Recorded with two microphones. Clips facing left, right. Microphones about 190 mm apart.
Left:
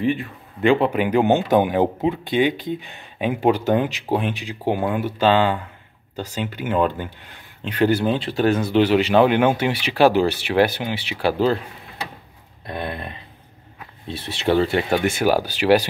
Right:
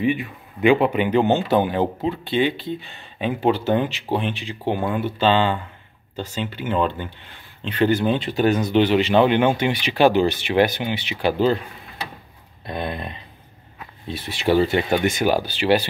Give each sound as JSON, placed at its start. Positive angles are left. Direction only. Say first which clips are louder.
{"t": 0.0, "sound": "speech", "louder": "even", "side_deg": -10}
{"t": 0.9, "sound": "speech", "louder": "left 1 dB", "side_deg": 5}
{"t": 12.6, "sound": "a sound", "louder": "right 1 dB", "side_deg": -20}
{"t": 14.0, "sound": "speech", "louder": "even", "side_deg": 25}
{"t": 14.4, "sound": "speech", "louder": "right 1 dB", "side_deg": -5}